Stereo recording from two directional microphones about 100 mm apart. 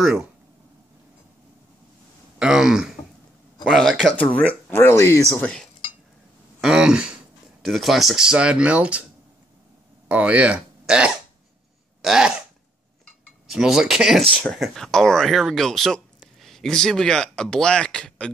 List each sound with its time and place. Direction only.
2.3 s speech: 10° right (ahead or behind)
4.6 s speech: 25° left (ahead or behind)
5.4 s cutlery: 10° left (ahead or behind)
6.6 s a sound: 10° right (ahead or behind)
7.6 s speech: centre (ahead or behind)
10.0 s speech: 15° right (ahead or behind)
12.0 s throat clearing: 5° right (ahead or behind)
13.5 s speech: 5° right (ahead or behind)